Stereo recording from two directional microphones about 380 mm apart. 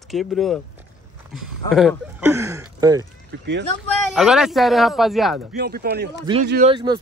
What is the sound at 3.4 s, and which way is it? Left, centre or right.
Speech, right.